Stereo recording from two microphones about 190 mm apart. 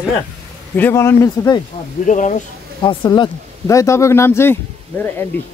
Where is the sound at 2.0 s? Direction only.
40° left (ahead or behind).